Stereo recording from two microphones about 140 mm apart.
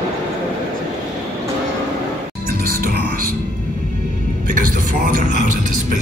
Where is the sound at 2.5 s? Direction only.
90° right.